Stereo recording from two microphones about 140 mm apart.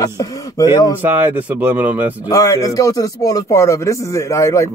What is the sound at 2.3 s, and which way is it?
Speech, 25° left (ahead or behind).